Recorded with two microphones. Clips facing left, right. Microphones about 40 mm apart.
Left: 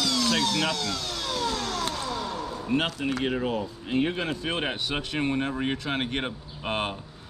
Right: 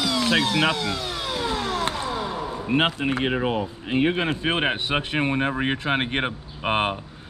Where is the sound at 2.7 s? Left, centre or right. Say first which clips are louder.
Right 5 dB; right.